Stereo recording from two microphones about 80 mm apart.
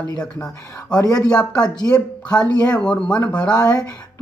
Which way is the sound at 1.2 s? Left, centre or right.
Centre.